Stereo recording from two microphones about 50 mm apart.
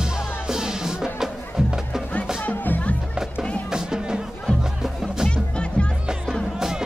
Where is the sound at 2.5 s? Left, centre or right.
Left.